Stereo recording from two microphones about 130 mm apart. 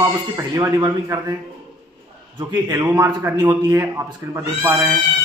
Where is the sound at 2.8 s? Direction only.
20° right (ahead or behind).